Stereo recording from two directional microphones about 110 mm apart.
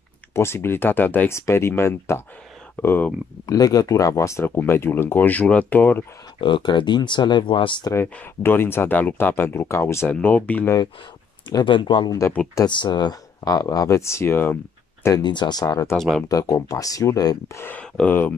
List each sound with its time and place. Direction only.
0.3 s speech: 25° left (ahead or behind)
3.4 s speech: 35° left (ahead or behind); by 6.0 s 15° left (ahead or behind)
6.4 s speech: 45° left (ahead or behind)
7.9 s speech: 20° left (ahead or behind)
11.4 s speech: 45° left (ahead or behind); by 14.6 s 20° left (ahead or behind)
15.1 s speech: 40° left (ahead or behind)
15.6 s speech: 30° left (ahead or behind)
16.0 s speech: 5° left (ahead or behind)
16.3 s speech: 30° left (ahead or behind)
17.6 s speech: 20° left (ahead or behind)